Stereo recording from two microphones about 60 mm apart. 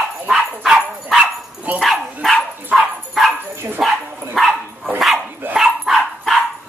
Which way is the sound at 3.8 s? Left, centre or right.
Centre.